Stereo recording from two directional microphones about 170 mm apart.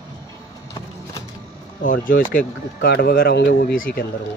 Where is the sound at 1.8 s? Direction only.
55° left (ahead or behind).